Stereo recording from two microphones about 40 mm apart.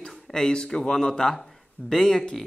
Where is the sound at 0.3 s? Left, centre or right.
Centre.